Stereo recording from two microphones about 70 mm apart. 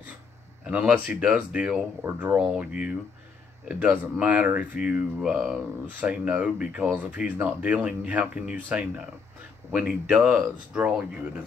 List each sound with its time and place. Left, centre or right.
0.7 s speech: centre